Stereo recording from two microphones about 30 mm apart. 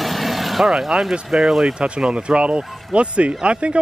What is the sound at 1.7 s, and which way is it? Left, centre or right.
Speech, right.